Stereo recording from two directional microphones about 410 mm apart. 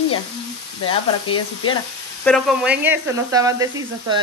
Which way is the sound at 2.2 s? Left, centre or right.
Centre.